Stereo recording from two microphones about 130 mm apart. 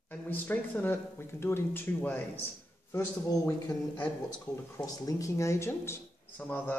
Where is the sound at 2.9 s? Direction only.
25° left (ahead or behind).